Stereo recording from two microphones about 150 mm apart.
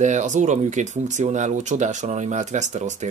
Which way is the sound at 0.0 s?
55° right (ahead or behind).